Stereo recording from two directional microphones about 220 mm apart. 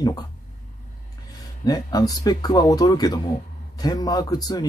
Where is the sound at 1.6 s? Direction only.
15° left (ahead or behind).